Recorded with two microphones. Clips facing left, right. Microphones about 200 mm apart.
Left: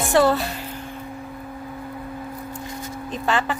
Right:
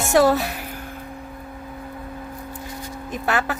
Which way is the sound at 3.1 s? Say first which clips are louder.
Even; 10° right (ahead or behind).